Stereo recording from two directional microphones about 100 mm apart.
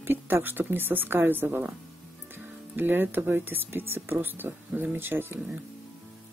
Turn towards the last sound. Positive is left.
turn(degrees=-20)  # may be behind; listen again after turning